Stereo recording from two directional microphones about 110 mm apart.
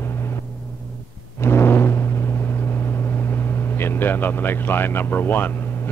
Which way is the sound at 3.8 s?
20° left (ahead or behind).